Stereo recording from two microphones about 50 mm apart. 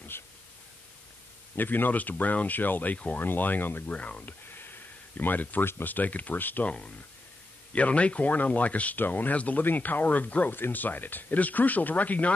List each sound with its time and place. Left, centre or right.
0.1 s pink noise: left
1.5 s speech: left
3.9 s speech: left
4.3 s a sound: left
5.9 s speech: left
6.6 s speech: left